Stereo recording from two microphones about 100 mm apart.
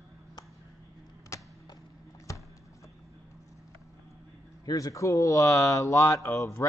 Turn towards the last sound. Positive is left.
turn(degrees=25)  # may be behind; listen again after turning